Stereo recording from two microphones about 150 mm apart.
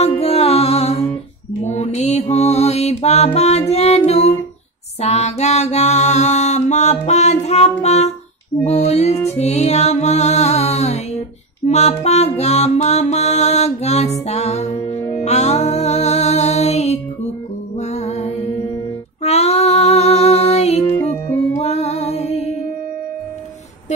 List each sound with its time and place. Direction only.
0.0 s music: 40° left (ahead or behind)
5.0 s mantra: 45° left (ahead or behind)
7.8 s music: 45° left (ahead or behind)